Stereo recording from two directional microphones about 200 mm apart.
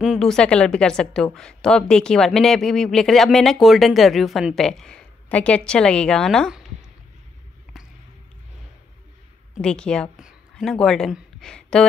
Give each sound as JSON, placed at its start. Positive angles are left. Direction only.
{"t": 0.0, "sound": "a woman's voice", "side_deg": 0}
{"t": 9.6, "sound": "a woman's voice", "side_deg": 5}